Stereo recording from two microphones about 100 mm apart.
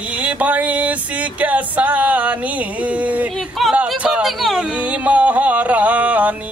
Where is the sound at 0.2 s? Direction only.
15° right (ahead or behind).